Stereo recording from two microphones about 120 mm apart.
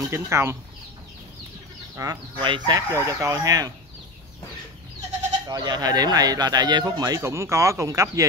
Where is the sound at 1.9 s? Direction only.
30° right (ahead or behind).